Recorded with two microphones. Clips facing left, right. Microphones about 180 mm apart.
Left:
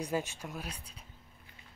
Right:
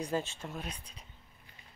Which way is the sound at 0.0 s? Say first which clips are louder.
Even; 10° left (ahead or behind).